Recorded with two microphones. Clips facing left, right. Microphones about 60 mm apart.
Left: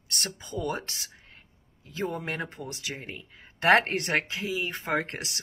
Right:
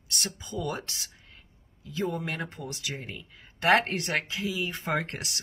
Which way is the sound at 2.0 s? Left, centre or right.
Centre.